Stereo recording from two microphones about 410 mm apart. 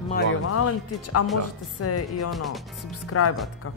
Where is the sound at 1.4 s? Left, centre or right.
Left.